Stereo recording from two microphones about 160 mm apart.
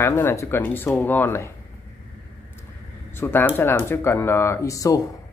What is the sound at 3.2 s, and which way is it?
Speech, 10° left (ahead or behind).